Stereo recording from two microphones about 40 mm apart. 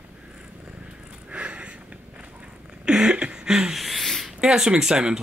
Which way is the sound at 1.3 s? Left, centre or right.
Right.